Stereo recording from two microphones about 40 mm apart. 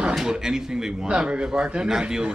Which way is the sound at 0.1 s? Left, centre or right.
Centre.